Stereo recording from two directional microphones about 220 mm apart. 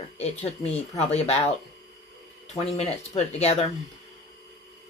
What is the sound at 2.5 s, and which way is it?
Speech, 30° left (ahead or behind).